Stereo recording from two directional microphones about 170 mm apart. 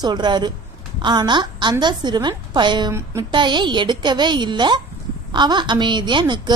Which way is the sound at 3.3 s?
25° right (ahead or behind).